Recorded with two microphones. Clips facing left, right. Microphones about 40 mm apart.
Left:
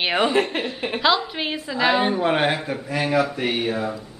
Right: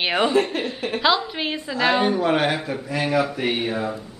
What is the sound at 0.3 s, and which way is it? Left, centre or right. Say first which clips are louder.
Speech: right 1 dB; left.